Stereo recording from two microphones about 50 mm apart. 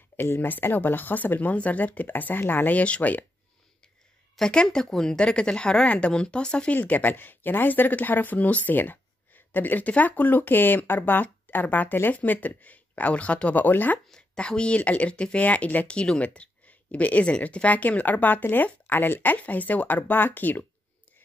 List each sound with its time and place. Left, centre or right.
0.2 s speech: left
2.8 s speech: left
4.4 s speech: centre
6.9 s speech: left
14.1 s speech: centre; by 19.3 s left
19.3 s speech: left